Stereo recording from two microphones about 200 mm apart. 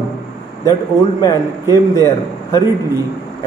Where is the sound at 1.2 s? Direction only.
15° left (ahead or behind).